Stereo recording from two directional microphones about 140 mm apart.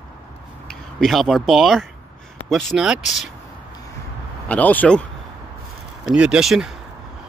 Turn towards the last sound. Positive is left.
turn(degrees=-5)  # may be behind; listen again after turning